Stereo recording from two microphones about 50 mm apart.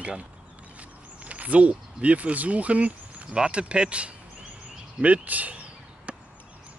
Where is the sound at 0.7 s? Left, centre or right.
Right.